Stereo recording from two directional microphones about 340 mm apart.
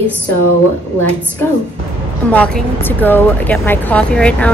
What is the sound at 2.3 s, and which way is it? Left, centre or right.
A woman's voice, centre.